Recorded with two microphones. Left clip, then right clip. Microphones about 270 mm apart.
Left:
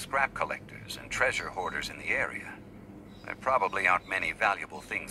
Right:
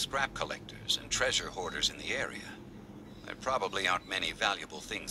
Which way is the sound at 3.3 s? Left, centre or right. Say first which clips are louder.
Left 5 dB; centre.